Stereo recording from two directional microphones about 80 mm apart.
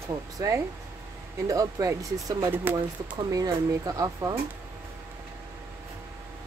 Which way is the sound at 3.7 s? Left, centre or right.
Right.